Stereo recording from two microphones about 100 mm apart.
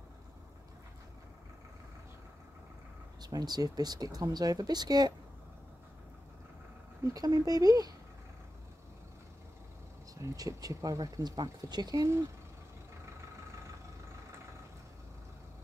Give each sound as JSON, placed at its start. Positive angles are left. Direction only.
{"t": 3.2, "sound": "speech", "side_deg": -40}
{"t": 7.2, "sound": "speech", "side_deg": -40}
{"t": 10.2, "sound": "speech", "side_deg": -35}